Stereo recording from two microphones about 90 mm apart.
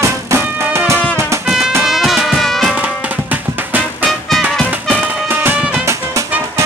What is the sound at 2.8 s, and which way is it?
Music, 20° right (ahead or behind).